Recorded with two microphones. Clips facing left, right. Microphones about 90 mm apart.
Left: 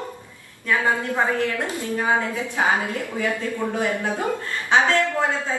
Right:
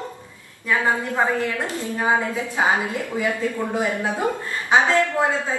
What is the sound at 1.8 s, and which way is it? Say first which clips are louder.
A woman's voice: right 1 dB; 20° right (ahead or behind).